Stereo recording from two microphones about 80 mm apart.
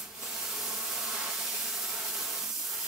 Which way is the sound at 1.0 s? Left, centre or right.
Centre.